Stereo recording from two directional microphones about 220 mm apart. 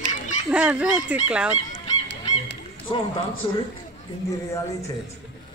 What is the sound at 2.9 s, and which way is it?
Speech, 25° left (ahead or behind).